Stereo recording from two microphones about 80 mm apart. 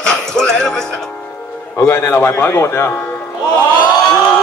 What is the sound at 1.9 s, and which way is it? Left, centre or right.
A man's voice, left.